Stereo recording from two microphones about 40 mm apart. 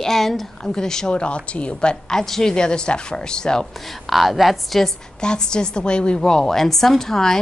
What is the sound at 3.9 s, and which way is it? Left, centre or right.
A woman's voice, centre.